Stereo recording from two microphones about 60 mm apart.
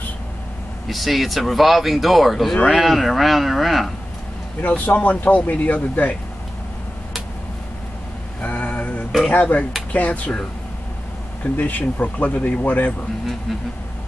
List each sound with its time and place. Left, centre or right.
0.8 s speech: centre
4.6 s speech: left
8.4 s a sound: left
9.3 s speech: left
11.5 s speech: left